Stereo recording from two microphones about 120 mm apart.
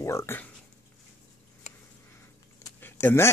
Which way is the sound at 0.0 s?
25° left (ahead or behind).